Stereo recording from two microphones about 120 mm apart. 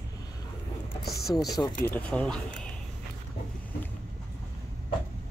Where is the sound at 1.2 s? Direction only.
30° left (ahead or behind).